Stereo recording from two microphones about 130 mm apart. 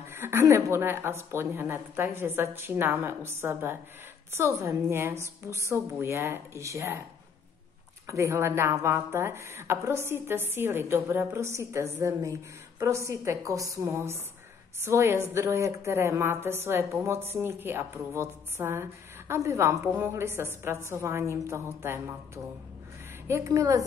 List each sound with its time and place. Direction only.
0.1 s a woman's voice: 20° right (ahead or behind)
8.1 s a woman's voice: 20° right (ahead or behind)